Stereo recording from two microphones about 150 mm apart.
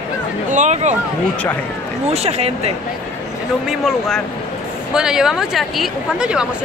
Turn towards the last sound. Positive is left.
turn(degrees=-5)  # may be behind; listen again after turning